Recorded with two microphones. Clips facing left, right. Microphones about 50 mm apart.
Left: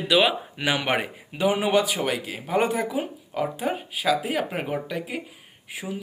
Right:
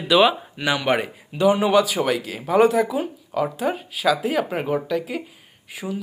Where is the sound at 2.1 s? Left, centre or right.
Centre.